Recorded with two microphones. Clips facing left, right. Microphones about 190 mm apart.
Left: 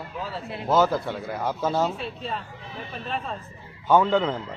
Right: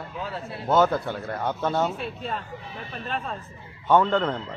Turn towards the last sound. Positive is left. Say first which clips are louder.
# left 1 dB
turn(degrees=5)  # may be behind; listen again after turning